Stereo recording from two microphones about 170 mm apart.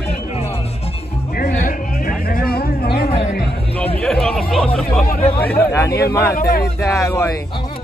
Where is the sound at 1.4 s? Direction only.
55° left (ahead or behind).